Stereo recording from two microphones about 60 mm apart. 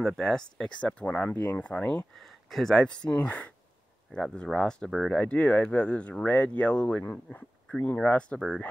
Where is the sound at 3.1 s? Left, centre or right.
Left.